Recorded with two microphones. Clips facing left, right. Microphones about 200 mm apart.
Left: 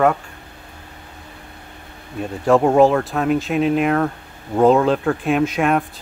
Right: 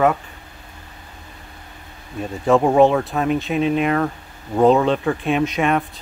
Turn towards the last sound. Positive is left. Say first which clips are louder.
# left 1 dB
turn(degrees=0)  # may be behind; listen again after turning